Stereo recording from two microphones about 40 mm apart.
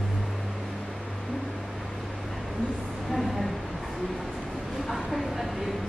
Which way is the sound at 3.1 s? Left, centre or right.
Centre.